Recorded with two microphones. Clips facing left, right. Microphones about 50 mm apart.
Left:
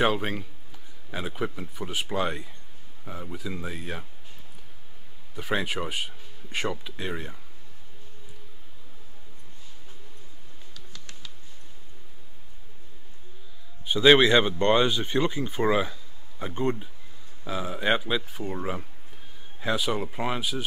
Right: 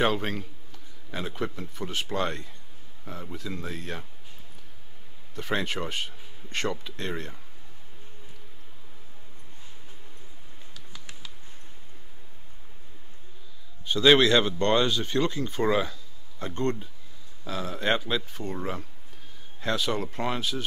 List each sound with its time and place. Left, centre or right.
0.0 s speech: centre
5.3 s speech: centre
10.7 s a sound: centre
13.8 s speech: centre